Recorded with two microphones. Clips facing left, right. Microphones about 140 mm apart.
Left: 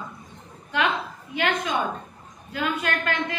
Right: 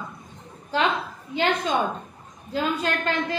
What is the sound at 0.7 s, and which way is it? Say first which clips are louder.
A woman's voice: right 1 dB; 30° right (ahead or behind).